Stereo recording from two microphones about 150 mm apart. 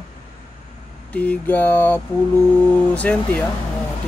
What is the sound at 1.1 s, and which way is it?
Speech, 10° left (ahead or behind).